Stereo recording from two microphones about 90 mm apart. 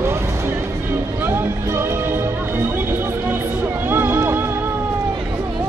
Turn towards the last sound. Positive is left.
turn(degrees=-25)  # may be behind; listen again after turning